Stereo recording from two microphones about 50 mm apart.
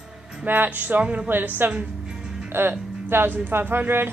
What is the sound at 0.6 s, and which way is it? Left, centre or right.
A woman's voice, right.